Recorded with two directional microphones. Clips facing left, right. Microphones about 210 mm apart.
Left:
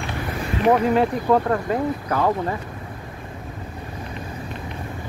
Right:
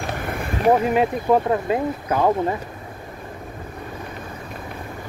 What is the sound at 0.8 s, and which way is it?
Speech, 15° right (ahead or behind).